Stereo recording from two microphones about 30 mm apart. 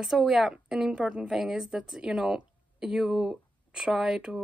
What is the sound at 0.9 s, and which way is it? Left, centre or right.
Speech, right.